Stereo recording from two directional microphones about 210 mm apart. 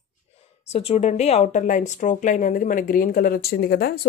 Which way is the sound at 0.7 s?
30° left (ahead or behind).